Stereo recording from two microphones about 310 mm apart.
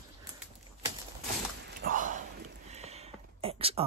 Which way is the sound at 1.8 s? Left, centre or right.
Right.